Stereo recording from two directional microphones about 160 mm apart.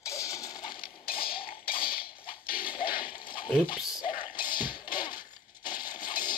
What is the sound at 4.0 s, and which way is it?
Music, 65° left (ahead or behind).